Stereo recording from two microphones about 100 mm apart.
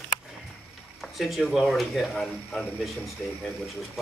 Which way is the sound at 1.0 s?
Centre (ahead or behind).